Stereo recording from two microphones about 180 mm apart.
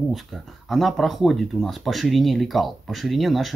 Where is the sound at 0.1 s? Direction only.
Centre (ahead or behind).